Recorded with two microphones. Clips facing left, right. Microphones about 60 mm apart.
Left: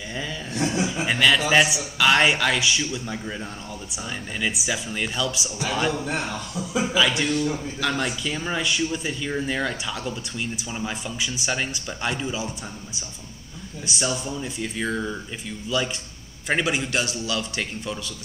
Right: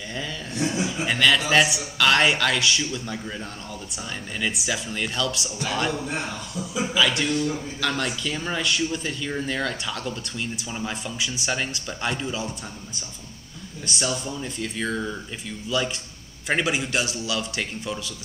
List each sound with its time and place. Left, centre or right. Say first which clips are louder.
0.7 s chuckle: left 1 dB; centre
1.0 s speech: even; centre
13.8 s speech: left 1 dB; centre